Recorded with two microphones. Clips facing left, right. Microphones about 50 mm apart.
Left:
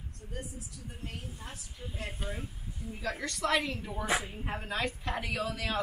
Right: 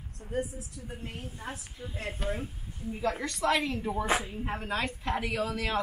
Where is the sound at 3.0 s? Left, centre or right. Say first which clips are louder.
Right 3 dB; right.